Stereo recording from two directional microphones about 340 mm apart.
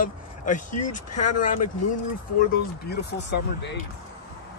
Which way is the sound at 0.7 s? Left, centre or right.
Left.